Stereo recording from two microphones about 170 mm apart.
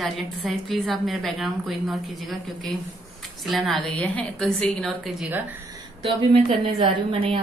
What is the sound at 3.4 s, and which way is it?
A woman's voice, centre (ahead or behind).